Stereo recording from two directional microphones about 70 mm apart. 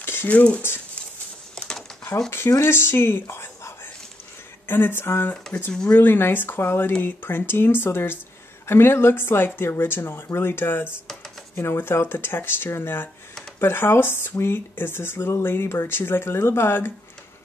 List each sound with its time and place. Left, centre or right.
0.0 s a sound: left
0.3 s speech: left
2.6 s a woman's voice: left
5.7 s speech: centre
5.9 s speech: left